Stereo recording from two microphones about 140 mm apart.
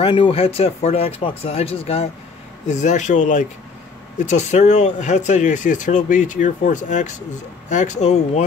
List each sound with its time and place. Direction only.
0.0 s speech: 40° left (ahead or behind)
2.7 s speech: 60° left (ahead or behind)